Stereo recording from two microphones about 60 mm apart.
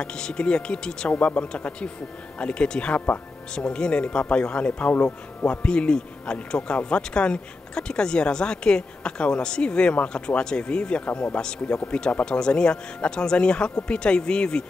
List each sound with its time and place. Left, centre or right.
0.0 s speech: centre
4.9 s speech: left
5.5 s speech: centre